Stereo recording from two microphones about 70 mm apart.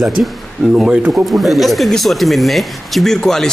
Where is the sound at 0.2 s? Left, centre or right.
Centre.